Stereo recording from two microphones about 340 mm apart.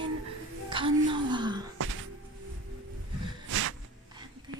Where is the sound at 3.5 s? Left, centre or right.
Right.